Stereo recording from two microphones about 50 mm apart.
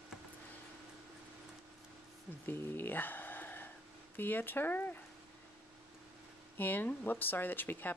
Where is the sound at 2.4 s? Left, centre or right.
Left.